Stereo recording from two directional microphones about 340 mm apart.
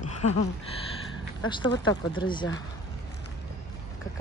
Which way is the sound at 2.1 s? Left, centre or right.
Centre.